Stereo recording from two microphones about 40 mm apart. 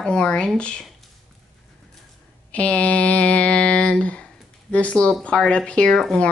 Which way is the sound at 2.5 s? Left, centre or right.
Left.